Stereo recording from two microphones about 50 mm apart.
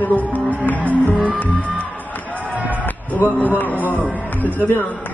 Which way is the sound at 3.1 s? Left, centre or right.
Left.